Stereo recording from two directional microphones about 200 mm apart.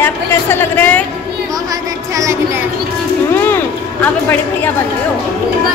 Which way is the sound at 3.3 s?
10° left (ahead or behind).